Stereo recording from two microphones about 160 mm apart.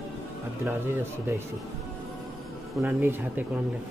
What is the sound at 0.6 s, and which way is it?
Speech, 15° right (ahead or behind).